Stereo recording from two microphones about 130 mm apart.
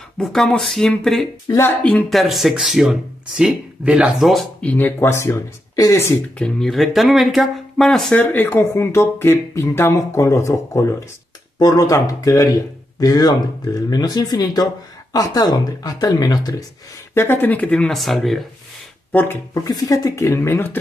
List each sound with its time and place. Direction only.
0.2 s speech: centre (ahead or behind)
2.0 s speech: centre (ahead or behind)
4.6 s speech: 15° left (ahead or behind)
8.2 s speech: 15° left (ahead or behind)
17.1 s speech: 15° left (ahead or behind); by 18.4 s centre (ahead or behind)
19.1 s speech: 20° left (ahead or behind)